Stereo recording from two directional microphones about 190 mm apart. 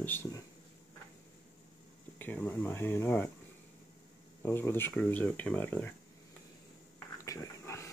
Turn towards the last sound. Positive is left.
turn(degrees=15)  # may be behind; listen again after turning